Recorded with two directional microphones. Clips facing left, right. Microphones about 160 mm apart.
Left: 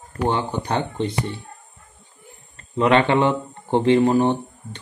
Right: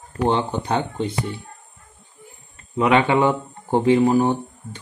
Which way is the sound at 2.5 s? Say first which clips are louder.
Even; 10° right (ahead or behind).